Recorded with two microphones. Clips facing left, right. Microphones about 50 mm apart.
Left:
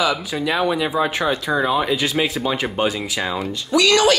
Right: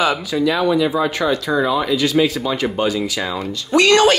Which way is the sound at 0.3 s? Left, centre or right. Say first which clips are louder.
Right 3 dB; centre.